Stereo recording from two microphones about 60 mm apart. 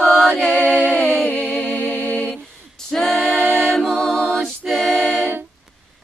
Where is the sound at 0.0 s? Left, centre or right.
Centre.